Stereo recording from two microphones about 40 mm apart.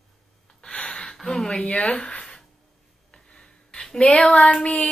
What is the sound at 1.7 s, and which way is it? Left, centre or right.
Speech, left.